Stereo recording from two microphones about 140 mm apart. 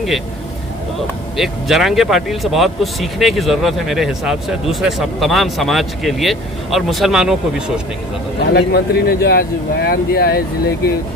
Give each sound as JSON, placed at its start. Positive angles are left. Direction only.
{"t": 1.3, "sound": "speech", "side_deg": 0}
{"t": 8.4, "sound": "speech", "side_deg": 90}